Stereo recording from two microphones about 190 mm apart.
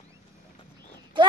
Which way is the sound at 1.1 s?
25° right (ahead or behind).